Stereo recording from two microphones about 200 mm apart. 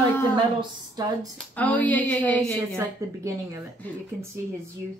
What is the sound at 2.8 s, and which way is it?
Speech, 15° right (ahead or behind).